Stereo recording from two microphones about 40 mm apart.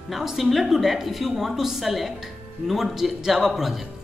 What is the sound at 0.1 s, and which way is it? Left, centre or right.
A woman's voice, centre.